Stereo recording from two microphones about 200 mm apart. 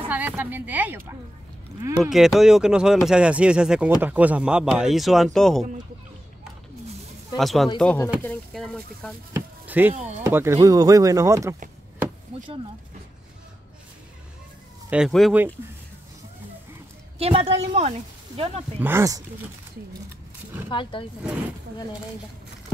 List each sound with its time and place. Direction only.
0.1 s a woman's voice: 10° right (ahead or behind)
7.3 s speech: centre (ahead or behind)
9.3 s a sound: 10° right (ahead or behind)
10.2 s speech: 15° right (ahead or behind)
12.3 s speech: 30° right (ahead or behind)
14.9 s speech: centre (ahead or behind)
17.2 s speech: 30° right (ahead or behind)
18.8 s speech: 10° right (ahead or behind)
20.7 s speech: 25° left (ahead or behind)